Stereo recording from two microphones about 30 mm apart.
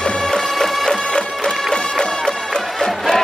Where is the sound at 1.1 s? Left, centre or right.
Left.